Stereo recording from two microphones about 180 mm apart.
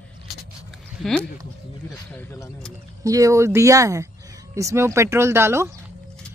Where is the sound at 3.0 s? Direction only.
20° right (ahead or behind).